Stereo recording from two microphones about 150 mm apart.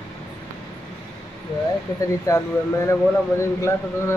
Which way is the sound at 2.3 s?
20° left (ahead or behind).